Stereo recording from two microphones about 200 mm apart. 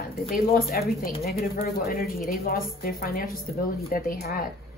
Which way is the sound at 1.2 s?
50° left (ahead or behind).